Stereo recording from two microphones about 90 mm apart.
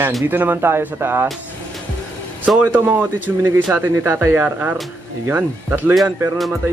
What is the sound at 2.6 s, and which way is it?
Speech, 20° right (ahead or behind).